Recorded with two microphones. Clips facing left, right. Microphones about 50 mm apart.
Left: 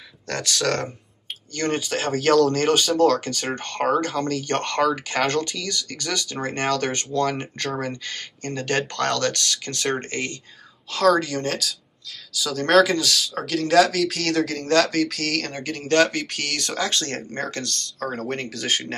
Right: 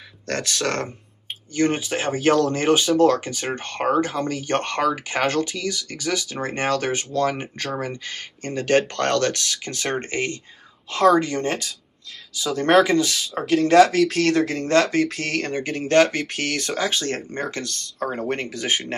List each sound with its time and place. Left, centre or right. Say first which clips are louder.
0.3 s speech: even; right
1.6 s speech: right 3 dB; centre
9.9 s speech: right 3 dB; right
14.3 s speech: right 1 dB; right